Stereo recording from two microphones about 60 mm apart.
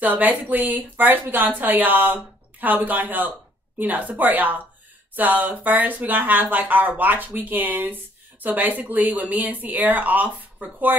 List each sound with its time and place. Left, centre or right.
0.0 s speech: right